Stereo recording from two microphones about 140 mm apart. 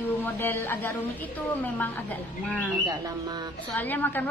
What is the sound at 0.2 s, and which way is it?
Speech, 15° left (ahead or behind).